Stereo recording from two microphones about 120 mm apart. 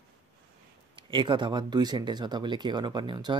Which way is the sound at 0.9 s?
45° right (ahead or behind).